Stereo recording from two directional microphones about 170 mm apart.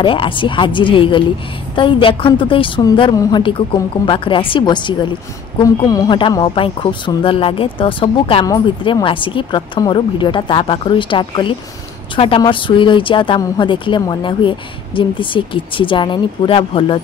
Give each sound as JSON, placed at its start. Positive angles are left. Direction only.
{"t": 0.0, "sound": "a woman's voice", "side_deg": 30}